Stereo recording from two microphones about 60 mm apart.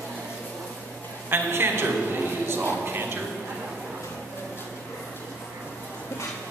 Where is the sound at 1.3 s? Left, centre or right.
Right.